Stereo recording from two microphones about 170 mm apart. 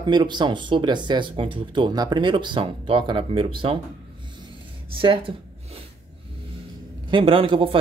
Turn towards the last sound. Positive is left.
turn(degrees=-30)  # may be behind; listen again after turning